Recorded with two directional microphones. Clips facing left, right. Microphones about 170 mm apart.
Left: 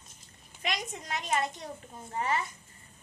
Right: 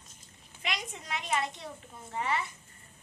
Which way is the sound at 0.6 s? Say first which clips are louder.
Left 3 dB; 45° left (ahead or behind).